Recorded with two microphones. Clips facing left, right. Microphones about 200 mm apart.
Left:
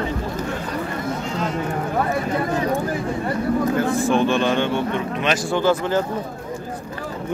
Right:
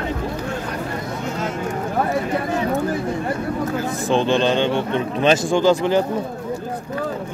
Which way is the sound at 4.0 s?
25° right (ahead or behind).